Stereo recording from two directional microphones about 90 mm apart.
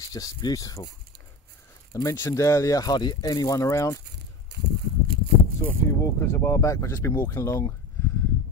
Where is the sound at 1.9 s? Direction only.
35° left (ahead or behind).